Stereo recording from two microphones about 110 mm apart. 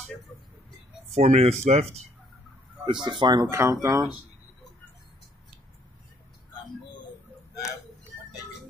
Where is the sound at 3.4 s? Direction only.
25° right (ahead or behind).